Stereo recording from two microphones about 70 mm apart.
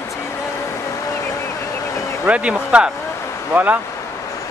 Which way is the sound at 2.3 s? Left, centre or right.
Centre.